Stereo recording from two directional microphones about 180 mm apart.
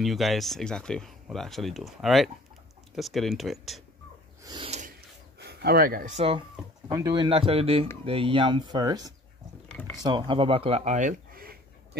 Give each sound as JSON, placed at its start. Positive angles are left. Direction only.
{"t": 0.0, "sound": "speech", "side_deg": 0}
{"t": 4.4, "sound": "a sound", "side_deg": -20}
{"t": 4.6, "sound": "filing", "side_deg": -40}
{"t": 5.4, "sound": "speech", "side_deg": -65}
{"t": 6.1, "sound": "speech", "side_deg": -30}